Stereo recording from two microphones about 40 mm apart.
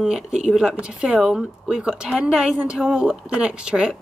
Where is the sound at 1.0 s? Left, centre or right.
Centre.